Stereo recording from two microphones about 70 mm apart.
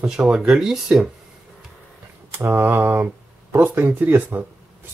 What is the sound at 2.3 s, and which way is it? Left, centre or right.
Speech, right.